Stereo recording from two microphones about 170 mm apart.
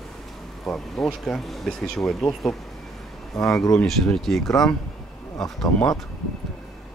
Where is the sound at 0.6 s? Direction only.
Centre (ahead or behind).